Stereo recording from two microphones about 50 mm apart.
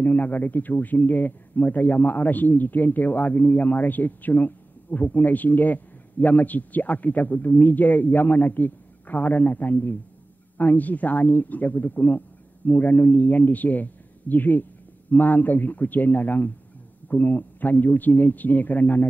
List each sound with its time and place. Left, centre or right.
0.0 s a man's voice: left